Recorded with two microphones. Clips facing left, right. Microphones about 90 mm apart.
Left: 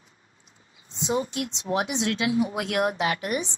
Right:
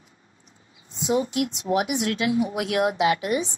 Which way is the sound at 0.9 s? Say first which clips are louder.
Right 3 dB; 25° left (ahead or behind).